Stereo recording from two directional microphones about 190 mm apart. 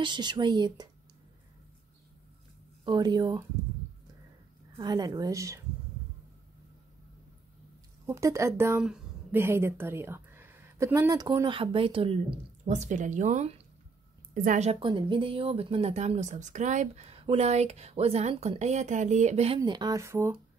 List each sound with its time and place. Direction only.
0.0 s a woman's voice: 25° right (ahead or behind)
2.8 s a woman's voice: 25° right (ahead or behind)
4.7 s a woman's voice: 20° right (ahead or behind)
8.1 s a woman's voice: 15° right (ahead or behind)